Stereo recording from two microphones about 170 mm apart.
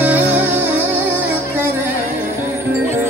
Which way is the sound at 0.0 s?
10° right (ahead or behind).